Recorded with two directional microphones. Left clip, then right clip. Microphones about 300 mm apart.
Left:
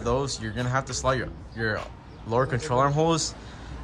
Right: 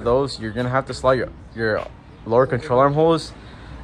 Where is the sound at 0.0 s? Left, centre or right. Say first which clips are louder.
Right 7 dB; centre.